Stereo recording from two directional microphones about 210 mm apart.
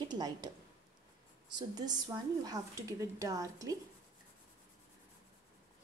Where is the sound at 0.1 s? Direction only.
20° right (ahead or behind).